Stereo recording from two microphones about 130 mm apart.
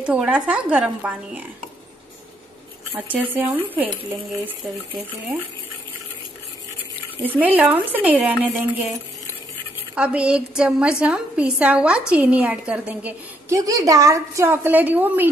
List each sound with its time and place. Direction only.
0.0 s a woman's voice: 10° right (ahead or behind)
3.1 s a woman's voice: 15° right (ahead or behind)
7.2 s a woman's voice: 10° right (ahead or behind)
9.9 s a woman's voice: 10° right (ahead or behind)
13.5 s a woman's voice: 25° right (ahead or behind)